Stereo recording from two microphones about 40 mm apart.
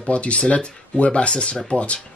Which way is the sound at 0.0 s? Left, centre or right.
Left.